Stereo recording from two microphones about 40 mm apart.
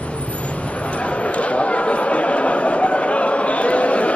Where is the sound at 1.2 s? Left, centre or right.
Left.